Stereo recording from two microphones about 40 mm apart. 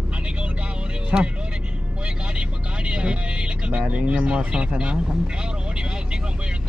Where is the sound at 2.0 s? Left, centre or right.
Right.